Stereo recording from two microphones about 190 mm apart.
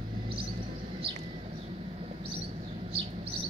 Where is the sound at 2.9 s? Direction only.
30° right (ahead or behind).